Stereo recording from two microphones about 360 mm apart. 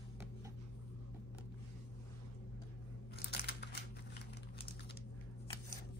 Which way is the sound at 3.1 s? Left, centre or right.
Left.